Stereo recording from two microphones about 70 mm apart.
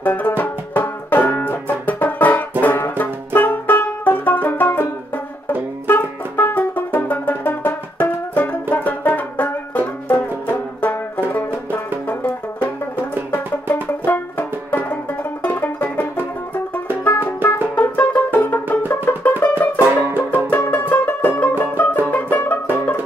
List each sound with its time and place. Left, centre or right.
0.0 s music: left
10.5 s banjo: left
14.0 s banjo: left
15.4 s music: left
19.8 s music: right
20.5 s music: left